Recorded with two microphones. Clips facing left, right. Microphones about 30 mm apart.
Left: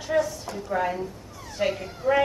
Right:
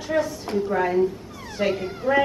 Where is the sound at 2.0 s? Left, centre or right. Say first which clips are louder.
Right 1 dB; right.